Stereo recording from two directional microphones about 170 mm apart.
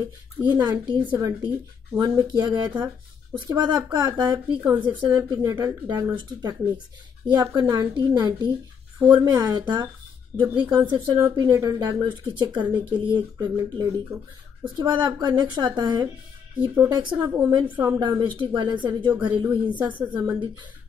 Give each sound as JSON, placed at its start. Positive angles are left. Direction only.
{"t": 0.4, "sound": "speech", "side_deg": -25}
{"t": 1.1, "sound": "a woman's voice", "side_deg": -15}
{"t": 19.8, "sound": "a woman's voice", "side_deg": -10}
{"t": 20.2, "sound": "speech", "side_deg": -25}